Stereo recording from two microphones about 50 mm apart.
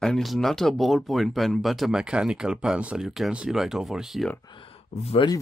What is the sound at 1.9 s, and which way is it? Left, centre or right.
Speech, centre.